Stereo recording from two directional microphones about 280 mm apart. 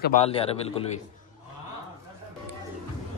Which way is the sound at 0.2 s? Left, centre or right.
Left.